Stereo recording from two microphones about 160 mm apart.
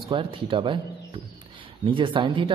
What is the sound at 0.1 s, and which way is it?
Speech, 30° right (ahead or behind).